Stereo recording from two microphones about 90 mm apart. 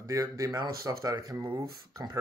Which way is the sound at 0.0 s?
40° right (ahead or behind).